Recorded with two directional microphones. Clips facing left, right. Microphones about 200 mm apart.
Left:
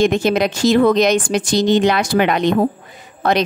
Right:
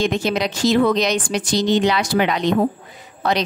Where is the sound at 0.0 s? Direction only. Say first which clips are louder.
Left 5 dB; 50° left (ahead or behind).